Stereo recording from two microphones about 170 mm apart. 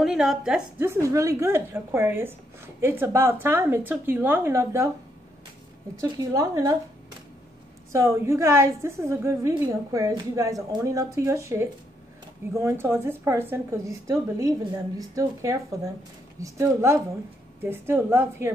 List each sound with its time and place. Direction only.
0.0 s a woman's voice: 5° right (ahead or behind)
0.8 s a woman's voice: 15° right (ahead or behind)
5.9 s speech: 20° right (ahead or behind)
7.9 s a woman's voice: 15° right (ahead or behind)